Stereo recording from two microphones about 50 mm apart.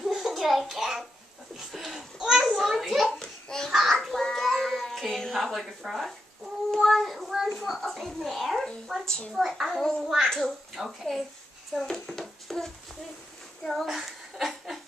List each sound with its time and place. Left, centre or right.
0.0 s a sound: centre
1.7 s speech: centre
3.1 s a sound: centre
3.7 s child singing: centre
5.8 s speech: centre
10.0 s speech: centre
13.9 s chuckle: centre